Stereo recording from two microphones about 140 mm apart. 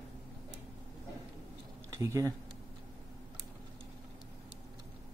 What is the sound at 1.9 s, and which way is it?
Speech, 25° right (ahead or behind).